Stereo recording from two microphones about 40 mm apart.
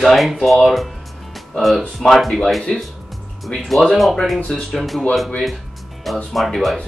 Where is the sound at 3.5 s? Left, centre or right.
Left.